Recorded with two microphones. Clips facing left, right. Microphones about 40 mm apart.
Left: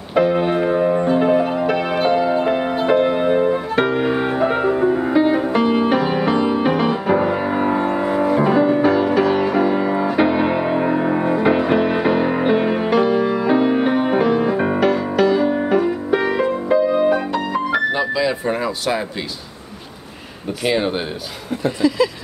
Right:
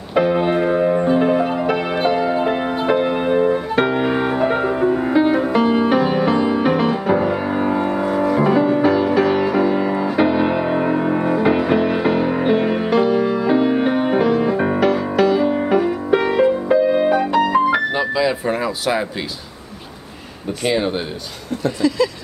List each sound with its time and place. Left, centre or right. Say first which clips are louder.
0.1 s music: even; centre
17.3 s music: right 6 dB; right
17.7 s music: even; centre
20.6 s speech: even; centre
21.6 s a sound: left 1 dB; centre